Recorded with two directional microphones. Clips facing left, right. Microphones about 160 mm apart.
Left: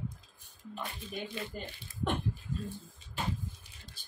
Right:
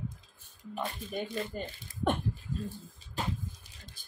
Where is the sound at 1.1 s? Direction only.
45° right (ahead or behind).